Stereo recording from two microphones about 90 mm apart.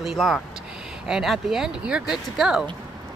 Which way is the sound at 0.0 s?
Centre (ahead or behind).